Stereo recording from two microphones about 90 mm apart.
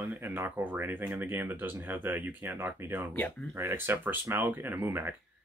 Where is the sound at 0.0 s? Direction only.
25° right (ahead or behind).